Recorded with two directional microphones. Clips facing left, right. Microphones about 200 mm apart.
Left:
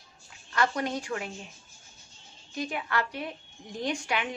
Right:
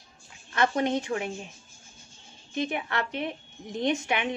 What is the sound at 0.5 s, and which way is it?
Speech, 25° right (ahead or behind).